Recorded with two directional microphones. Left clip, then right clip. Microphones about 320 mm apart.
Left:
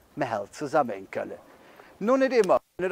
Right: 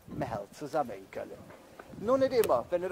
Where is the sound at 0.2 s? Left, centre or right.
Left.